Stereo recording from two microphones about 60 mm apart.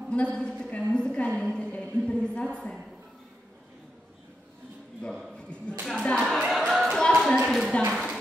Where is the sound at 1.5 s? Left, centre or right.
Centre.